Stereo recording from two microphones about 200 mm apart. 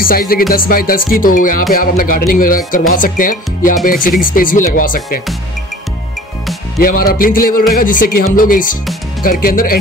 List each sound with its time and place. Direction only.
0.1 s speech: 45° left (ahead or behind)
6.8 s speech: 45° left (ahead or behind)